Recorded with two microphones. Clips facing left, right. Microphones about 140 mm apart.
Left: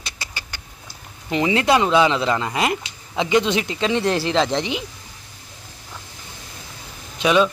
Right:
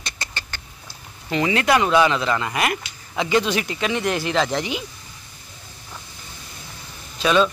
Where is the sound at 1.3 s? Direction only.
20° left (ahead or behind).